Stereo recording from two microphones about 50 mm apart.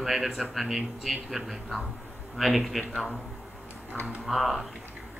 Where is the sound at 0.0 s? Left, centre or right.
Centre.